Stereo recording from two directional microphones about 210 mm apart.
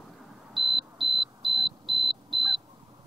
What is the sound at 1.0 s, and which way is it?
Smoke detector, 25° right (ahead or behind).